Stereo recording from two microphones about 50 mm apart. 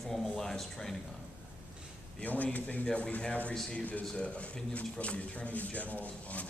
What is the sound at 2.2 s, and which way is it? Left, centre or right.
A man's voice, left.